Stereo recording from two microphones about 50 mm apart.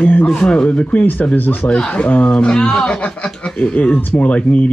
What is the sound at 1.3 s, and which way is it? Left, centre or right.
Speech, left.